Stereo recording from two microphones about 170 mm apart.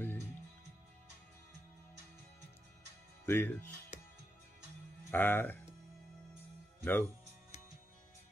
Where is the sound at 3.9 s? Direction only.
40° left (ahead or behind).